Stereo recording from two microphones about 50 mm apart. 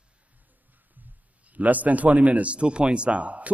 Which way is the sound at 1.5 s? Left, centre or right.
Right.